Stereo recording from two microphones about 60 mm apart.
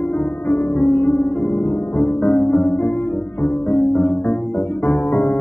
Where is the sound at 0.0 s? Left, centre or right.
Left.